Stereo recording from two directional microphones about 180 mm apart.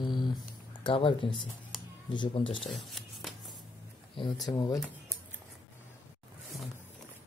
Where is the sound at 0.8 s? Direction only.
30° left (ahead or behind).